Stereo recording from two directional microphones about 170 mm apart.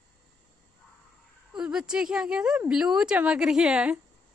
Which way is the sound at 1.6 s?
5° right (ahead or behind).